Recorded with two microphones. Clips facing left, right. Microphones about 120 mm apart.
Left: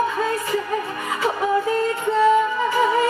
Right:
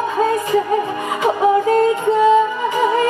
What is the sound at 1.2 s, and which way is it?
Music, 15° right (ahead or behind).